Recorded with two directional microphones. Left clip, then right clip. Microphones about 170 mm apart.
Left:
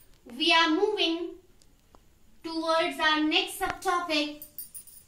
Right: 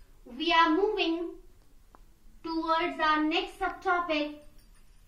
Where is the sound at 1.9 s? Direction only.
30° left (ahead or behind).